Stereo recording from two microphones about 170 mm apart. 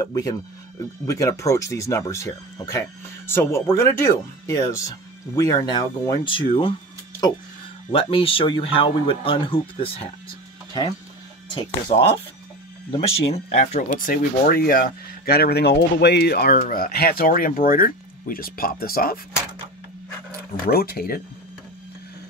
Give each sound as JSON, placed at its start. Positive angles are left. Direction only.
{"t": 0.0, "sound": "speech", "side_deg": 20}
{"t": 7.9, "sound": "speech", "side_deg": 35}
{"t": 11.9, "sound": "speech", "side_deg": 40}
{"t": 20.6, "sound": "speech", "side_deg": 65}